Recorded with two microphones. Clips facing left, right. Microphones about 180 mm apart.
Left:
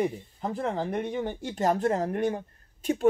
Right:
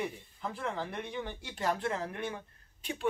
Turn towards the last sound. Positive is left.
turn(degrees=45)  # may be behind; listen again after turning